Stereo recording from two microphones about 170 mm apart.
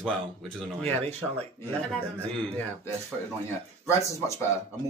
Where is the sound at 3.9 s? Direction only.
15° left (ahead or behind).